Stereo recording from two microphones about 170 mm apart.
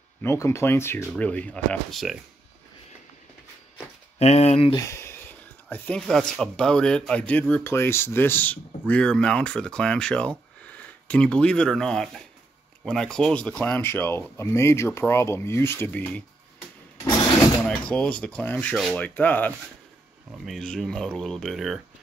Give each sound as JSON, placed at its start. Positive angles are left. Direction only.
{"t": 0.2, "sound": "speech", "side_deg": 15}
{"t": 4.2, "sound": "speech", "side_deg": 40}
{"t": 4.7, "sound": "a sound", "side_deg": 15}
{"t": 5.7, "sound": "speech", "side_deg": 5}
{"t": 17.6, "sound": "speech", "side_deg": 5}